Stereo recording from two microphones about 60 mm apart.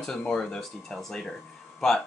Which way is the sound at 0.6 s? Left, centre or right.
Centre.